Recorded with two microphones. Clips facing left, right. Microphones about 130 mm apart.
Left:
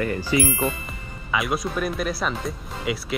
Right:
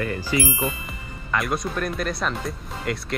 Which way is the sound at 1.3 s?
Centre (ahead or behind).